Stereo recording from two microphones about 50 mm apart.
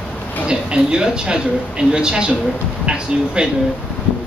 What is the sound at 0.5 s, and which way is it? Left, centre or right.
Speech, centre.